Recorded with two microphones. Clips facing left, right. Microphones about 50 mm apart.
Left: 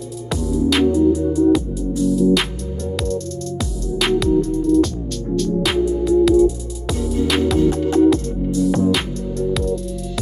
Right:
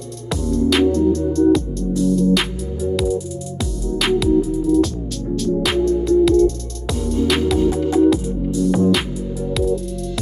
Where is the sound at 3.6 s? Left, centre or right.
Centre.